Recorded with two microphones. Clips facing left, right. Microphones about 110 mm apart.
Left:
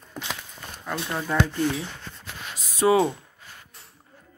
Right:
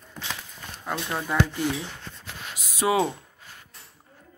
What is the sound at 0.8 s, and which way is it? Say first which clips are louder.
Speech: even; 10° right (ahead or behind).